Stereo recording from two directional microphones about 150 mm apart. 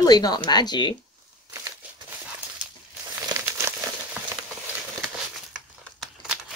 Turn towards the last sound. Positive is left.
turn(degrees=-5)  # may be behind; listen again after turning